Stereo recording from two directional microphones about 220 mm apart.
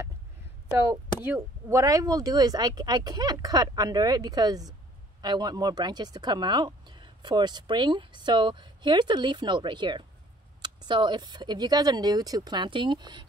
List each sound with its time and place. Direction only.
0.7 s speech: 10° right (ahead or behind)